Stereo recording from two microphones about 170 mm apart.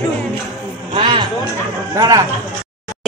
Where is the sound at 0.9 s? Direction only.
30° right (ahead or behind).